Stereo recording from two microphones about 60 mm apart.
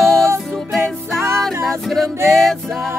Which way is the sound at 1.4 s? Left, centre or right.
Centre.